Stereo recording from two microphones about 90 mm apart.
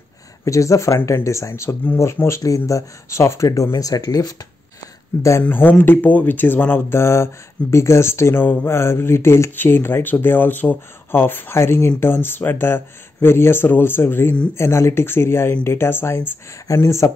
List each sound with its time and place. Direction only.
0.5 s speech: 35° left (ahead or behind)
5.4 s speech: 20° left (ahead or behind)